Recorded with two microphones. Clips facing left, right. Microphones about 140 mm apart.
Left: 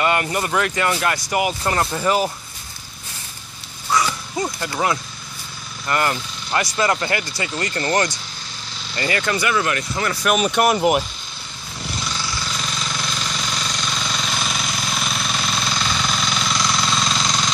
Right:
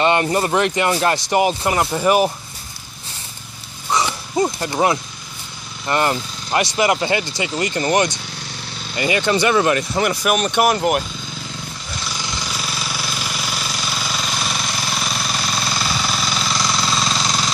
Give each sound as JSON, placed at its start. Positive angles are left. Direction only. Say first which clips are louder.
{"t": 0.0, "sound": "speech", "louder": "right 4 dB", "side_deg": -25}
{"t": 1.7, "sound": "speech", "louder": "right 3 dB", "side_deg": -10}
{"t": 3.9, "sound": "dog", "louder": "right 1 dB", "side_deg": -25}
{"t": 5.9, "sound": "speech", "louder": "right 3 dB", "side_deg": -25}
{"t": 10.2, "sound": "speech", "louder": "left 2 dB", "side_deg": 0}
{"t": 12.1, "sound": "jackhammer", "louder": "even", "side_deg": -15}